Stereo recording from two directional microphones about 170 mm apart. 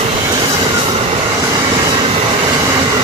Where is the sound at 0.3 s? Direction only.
25° right (ahead or behind).